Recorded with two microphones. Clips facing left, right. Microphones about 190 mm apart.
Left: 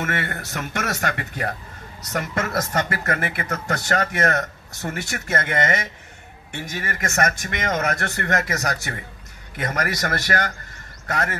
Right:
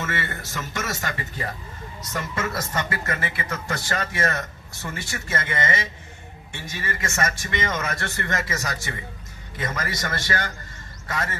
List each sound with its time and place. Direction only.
0.0 s speech: 60° left (ahead or behind)